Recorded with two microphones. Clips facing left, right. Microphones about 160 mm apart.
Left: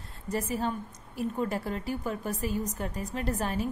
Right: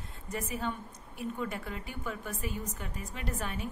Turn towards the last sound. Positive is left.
turn(degrees=35)  # may be behind; listen again after turning